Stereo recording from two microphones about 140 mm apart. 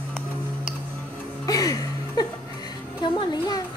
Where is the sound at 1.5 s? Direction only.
25° left (ahead or behind).